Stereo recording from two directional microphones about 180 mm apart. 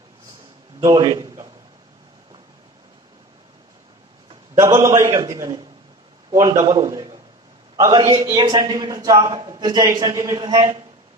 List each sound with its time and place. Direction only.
0.7 s a man's voice: 20° right (ahead or behind)
4.6 s a man's voice: 20° right (ahead or behind)